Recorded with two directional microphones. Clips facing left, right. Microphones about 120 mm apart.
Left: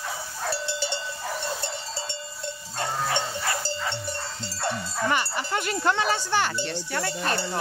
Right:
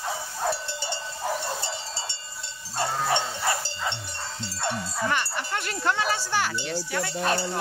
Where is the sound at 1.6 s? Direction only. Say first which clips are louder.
Left 1 dB; 50° left (ahead or behind).